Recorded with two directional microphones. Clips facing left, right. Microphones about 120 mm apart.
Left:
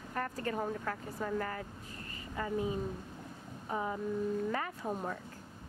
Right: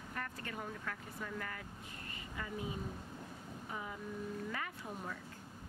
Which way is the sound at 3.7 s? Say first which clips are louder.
Left 10 dB; 40° left (ahead or behind).